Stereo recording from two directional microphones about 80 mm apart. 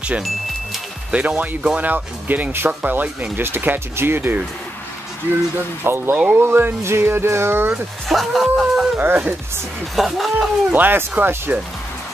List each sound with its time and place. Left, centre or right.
1.1 s speech: centre
5.9 s speech: right
8.1 s speech: centre
8.9 s speech: right
9.9 s speech: centre
10.7 s speech: right